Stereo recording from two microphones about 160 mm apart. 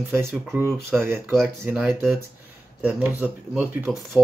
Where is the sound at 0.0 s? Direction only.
15° right (ahead or behind).